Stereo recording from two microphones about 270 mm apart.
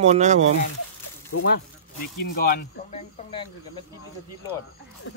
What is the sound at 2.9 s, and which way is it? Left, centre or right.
Speech, centre.